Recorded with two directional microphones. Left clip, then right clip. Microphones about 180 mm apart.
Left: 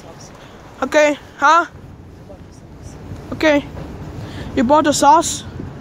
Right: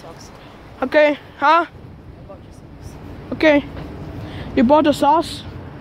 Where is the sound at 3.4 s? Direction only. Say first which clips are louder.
Right 1 dB; 25° right (ahead or behind).